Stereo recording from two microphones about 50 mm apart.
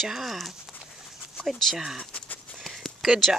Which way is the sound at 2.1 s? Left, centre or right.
Left.